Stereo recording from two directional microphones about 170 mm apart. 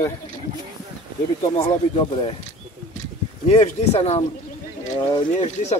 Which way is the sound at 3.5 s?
40° left (ahead or behind).